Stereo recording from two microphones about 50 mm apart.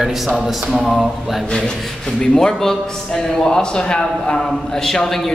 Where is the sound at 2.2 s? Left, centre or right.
Centre.